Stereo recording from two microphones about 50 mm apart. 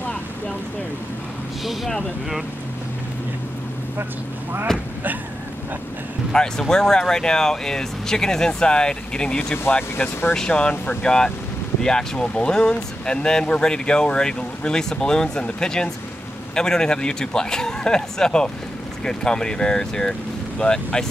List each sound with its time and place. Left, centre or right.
4.7 s speech: centre
6.3 s speech: centre
9.7 s speech: left
10.5 s speech: left